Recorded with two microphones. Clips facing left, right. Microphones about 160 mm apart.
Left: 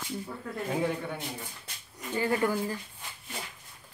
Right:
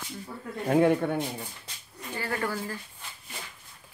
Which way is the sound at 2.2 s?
20° left (ahead or behind).